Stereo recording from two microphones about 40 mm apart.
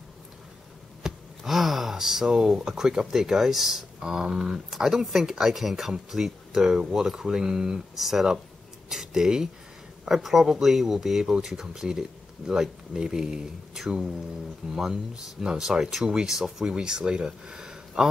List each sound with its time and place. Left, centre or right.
1.0 s hum: centre
1.4 s speech: centre
8.8 s a sound: centre
10.0 s speech: centre